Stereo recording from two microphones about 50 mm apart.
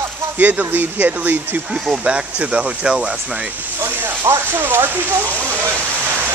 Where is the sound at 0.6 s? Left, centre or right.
Right.